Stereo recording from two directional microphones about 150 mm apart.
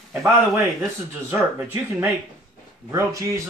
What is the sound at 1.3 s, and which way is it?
Speech, 15° right (ahead or behind).